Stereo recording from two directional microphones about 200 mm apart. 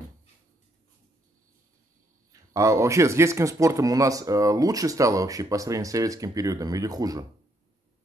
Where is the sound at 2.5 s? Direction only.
15° right (ahead or behind).